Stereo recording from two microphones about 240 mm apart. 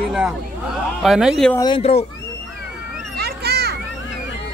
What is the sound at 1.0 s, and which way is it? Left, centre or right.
Speech, centre.